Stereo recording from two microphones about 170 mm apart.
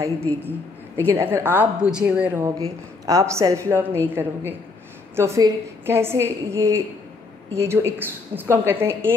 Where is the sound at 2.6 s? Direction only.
20° right (ahead or behind).